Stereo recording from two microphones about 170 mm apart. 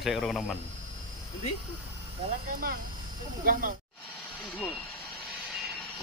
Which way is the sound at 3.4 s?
55° right (ahead or behind).